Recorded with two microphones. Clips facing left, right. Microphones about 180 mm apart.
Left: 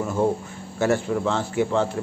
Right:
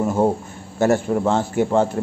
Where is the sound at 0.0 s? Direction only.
40° right (ahead or behind).